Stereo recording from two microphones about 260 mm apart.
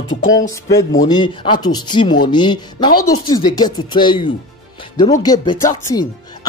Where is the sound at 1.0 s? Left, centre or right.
Centre.